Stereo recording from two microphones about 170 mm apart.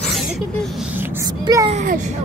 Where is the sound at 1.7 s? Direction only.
45° right (ahead or behind).